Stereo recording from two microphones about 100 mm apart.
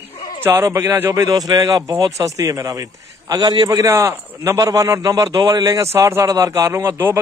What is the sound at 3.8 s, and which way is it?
A man's voice, 30° right (ahead or behind).